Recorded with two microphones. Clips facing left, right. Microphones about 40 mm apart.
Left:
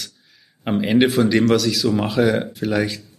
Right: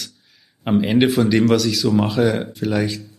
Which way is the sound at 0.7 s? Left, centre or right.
Centre.